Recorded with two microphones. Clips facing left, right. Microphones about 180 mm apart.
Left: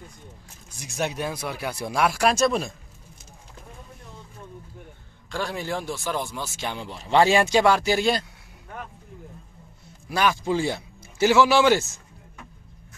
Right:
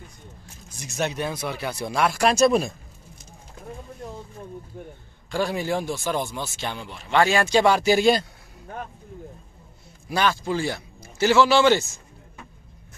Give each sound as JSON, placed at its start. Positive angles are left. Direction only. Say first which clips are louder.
{"t": 0.7, "sound": "speech", "louder": "right 1 dB", "side_deg": 10}
{"t": 2.4, "sound": "speech", "louder": "right 4 dB", "side_deg": -10}
{"t": 4.7, "sound": "a sound", "louder": "right 6 dB", "side_deg": -45}
{"t": 5.3, "sound": "speech", "louder": "right 4 dB", "side_deg": -5}
{"t": 6.8, "sound": "speech", "louder": "left 2 dB", "side_deg": 30}
{"t": 7.5, "sound": "speech", "louder": "right 1 dB", "side_deg": 0}
{"t": 10.3, "sound": "speech", "louder": "left 2 dB", "side_deg": 20}